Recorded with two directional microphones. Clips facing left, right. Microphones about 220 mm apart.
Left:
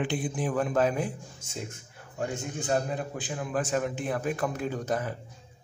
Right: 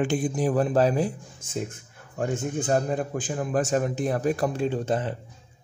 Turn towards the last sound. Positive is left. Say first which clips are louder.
# right 5 dB
turn(degrees=-25)  # may be behind; listen again after turning